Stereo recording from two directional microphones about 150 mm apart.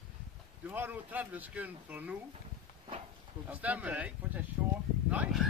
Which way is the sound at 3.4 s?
10° right (ahead or behind).